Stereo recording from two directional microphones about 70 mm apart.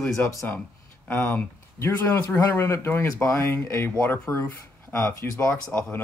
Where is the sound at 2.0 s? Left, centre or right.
Left.